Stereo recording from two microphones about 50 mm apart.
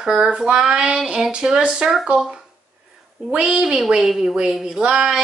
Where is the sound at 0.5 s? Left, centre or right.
Centre.